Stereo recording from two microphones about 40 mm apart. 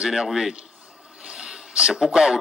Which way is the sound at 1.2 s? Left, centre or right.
Centre.